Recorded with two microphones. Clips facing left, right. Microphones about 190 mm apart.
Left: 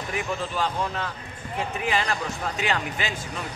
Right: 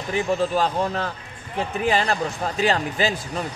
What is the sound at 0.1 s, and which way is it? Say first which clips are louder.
Speech: right 9 dB; 35° right (ahead or behind).